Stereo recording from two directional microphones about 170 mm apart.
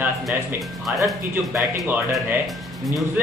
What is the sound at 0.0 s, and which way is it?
Speech, 10° right (ahead or behind).